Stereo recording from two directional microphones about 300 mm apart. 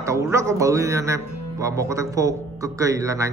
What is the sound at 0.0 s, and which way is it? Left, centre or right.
Speech, centre.